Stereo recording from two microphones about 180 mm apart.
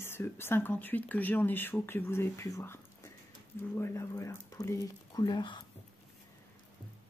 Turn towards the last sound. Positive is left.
turn(degrees=25)  # may be behind; listen again after turning